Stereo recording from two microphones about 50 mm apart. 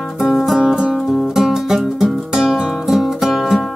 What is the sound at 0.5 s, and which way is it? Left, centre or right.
Music, centre.